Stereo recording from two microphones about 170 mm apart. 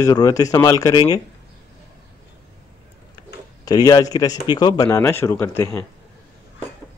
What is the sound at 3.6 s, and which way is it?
Speech, 20° left (ahead or behind).